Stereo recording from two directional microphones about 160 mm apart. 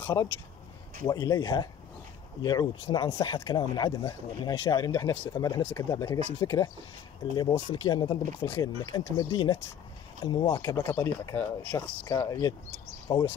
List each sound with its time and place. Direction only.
0.0 s speech: 20° left (ahead or behind)
5.3 s speech: 30° left (ahead or behind)
5.6 s speech: 15° left (ahead or behind)